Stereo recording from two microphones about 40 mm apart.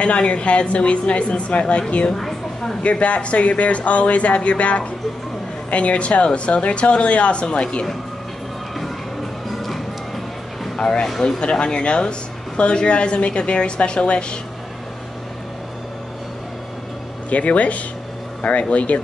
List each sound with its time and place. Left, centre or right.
0.0 s speech: left
2.1 s a sound: centre
2.8 s speech: left
10.8 s speech: centre
17.3 s speech: left